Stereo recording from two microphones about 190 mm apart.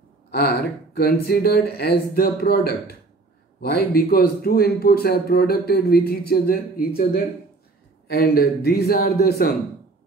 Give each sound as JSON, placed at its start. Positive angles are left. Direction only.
{"t": 0.3, "sound": "a man's voice", "side_deg": 55}
{"t": 8.1, "sound": "speech", "side_deg": 55}